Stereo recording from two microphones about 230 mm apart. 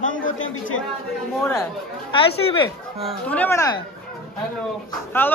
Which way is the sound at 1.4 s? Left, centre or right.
Centre.